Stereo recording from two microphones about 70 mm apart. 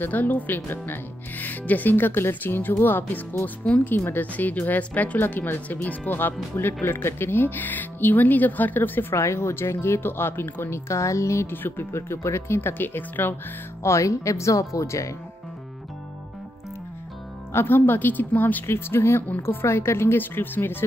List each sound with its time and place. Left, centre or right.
0.0 s speech: left
3.9 s speech: left
9.1 s speech: left
11.5 s speech: left
13.8 s speech: left
17.5 s speech: left
18.7 s speech: left